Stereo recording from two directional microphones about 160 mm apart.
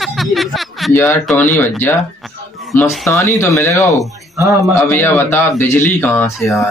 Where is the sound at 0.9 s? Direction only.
15° left (ahead or behind).